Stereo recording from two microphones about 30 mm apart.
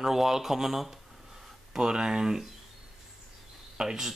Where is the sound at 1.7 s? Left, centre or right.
Right.